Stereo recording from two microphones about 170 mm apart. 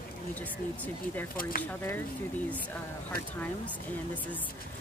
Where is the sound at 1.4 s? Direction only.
55° left (ahead or behind).